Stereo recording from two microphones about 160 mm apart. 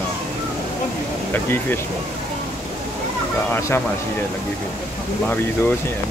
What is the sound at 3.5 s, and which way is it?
Speech, 15° left (ahead or behind).